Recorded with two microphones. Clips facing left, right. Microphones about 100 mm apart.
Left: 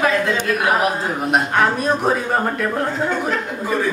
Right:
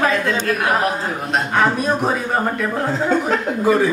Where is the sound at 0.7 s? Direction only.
10° left (ahead or behind).